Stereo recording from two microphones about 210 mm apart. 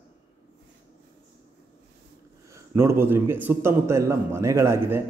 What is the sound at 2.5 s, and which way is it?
A man's voice, 10° right (ahead or behind).